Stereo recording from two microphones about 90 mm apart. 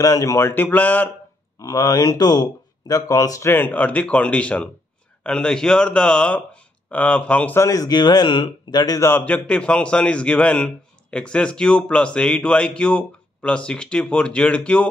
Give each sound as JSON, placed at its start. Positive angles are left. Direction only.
{"t": 0.0, "sound": "speech", "side_deg": 40}
{"t": 1.6, "sound": "speech", "side_deg": 40}
{"t": 3.4, "sound": "a man's voice", "side_deg": 25}
{"t": 7.5, "sound": "speech", "side_deg": 40}
{"t": 9.2, "sound": "a man's voice", "side_deg": 15}